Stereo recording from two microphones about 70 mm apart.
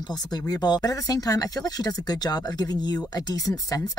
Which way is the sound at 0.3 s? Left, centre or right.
Left.